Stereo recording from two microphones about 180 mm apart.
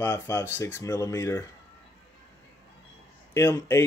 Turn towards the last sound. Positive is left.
turn(degrees=15)  # may be behind; listen again after turning